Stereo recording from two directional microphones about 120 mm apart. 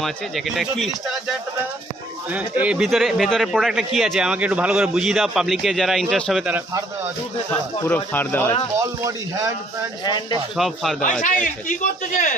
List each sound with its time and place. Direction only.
0.0 s speech: centre (ahead or behind)
2.3 s speech: 10° right (ahead or behind)
7.9 s speech: 15° left (ahead or behind)
8.7 s a man's voice: 25° right (ahead or behind)
10.0 s speech: 35° left (ahead or behind)
10.5 s speech: centre (ahead or behind)
11.2 s a man's voice: 90° left